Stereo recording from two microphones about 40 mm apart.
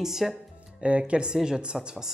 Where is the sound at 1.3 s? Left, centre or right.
Centre.